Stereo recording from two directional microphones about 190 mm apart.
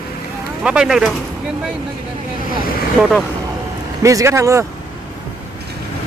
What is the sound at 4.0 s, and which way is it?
Speech, 15° right (ahead or behind).